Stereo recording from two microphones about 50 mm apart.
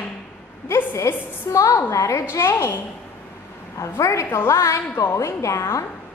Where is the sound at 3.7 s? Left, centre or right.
Left.